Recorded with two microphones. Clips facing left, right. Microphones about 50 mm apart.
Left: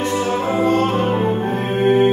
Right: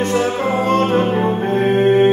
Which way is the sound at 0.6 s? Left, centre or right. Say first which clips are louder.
Right 2 dB; right.